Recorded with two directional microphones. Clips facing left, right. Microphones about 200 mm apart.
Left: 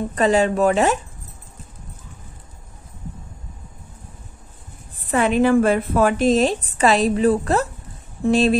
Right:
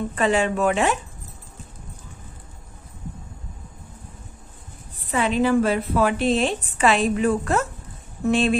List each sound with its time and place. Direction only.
0.1 s speech: 40° left (ahead or behind)
5.1 s a woman's voice: 55° left (ahead or behind); by 8.5 s 40° left (ahead or behind)